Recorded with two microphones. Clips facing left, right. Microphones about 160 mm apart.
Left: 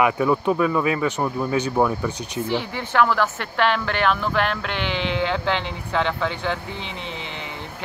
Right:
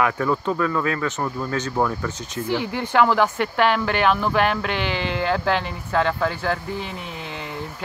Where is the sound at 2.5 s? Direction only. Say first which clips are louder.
Right 4 dB; 10° right (ahead or behind).